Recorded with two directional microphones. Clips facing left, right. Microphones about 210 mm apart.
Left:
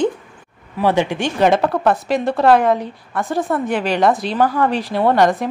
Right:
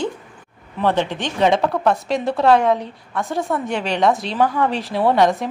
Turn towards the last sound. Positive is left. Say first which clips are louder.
# left 1 dB
turn(degrees=0)  # may be behind; listen again after turning